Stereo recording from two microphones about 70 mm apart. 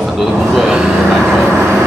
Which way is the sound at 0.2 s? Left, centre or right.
Centre.